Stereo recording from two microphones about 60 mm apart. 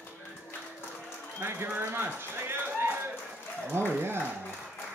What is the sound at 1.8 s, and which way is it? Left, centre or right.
Speech, right.